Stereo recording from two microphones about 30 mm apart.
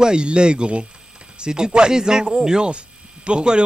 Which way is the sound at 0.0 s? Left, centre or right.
Right.